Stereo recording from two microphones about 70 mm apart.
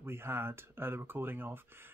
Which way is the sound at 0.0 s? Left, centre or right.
Right.